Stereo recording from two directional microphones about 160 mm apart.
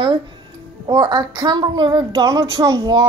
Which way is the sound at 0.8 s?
30° right (ahead or behind).